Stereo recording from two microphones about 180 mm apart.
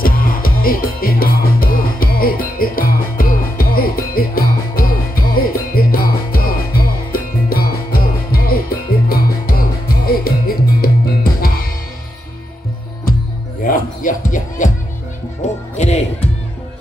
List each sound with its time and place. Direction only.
0.0 s music: 55° left (ahead or behind)
13.7 s music: 50° left (ahead or behind)
15.8 s music: 40° left (ahead or behind)